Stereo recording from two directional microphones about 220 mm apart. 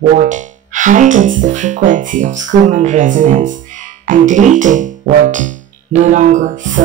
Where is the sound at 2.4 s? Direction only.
35° right (ahead or behind).